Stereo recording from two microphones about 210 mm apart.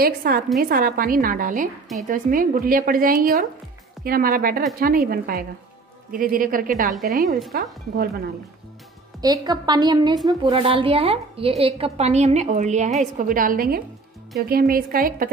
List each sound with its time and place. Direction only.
0.0 s a woman's voice: 45° right (ahead or behind)
7.2 s speech: centre (ahead or behind)
7.5 s speech: 45° right (ahead or behind)
9.2 s a woman's voice: 20° right (ahead or behind); by 15.2 s 40° right (ahead or behind)